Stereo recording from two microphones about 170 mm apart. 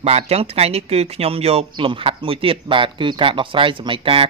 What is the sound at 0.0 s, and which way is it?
Speech, 35° right (ahead or behind).